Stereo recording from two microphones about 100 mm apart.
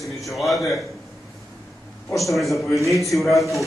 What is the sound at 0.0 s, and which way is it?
Speech, centre (ahead or behind).